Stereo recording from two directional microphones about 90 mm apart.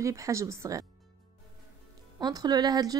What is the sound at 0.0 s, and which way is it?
Speech, 35° right (ahead or behind).